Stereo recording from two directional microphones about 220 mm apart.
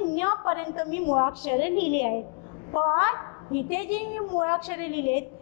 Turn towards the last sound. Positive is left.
turn(degrees=10)  # may be behind; listen again after turning